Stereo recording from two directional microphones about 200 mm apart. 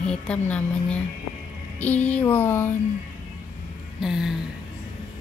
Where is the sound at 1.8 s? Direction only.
10° left (ahead or behind).